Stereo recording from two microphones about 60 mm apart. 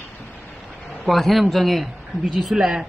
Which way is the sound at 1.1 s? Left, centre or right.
Centre.